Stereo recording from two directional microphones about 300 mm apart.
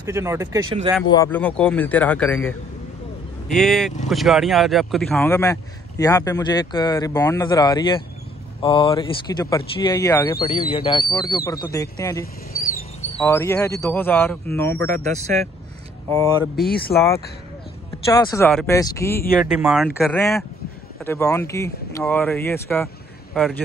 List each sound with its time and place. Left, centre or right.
0.0 s speech: centre
1.0 s speech: centre
16.1 s speech: centre
16.6 s speech: left
18.1 s speech: centre
19.4 s speech: centre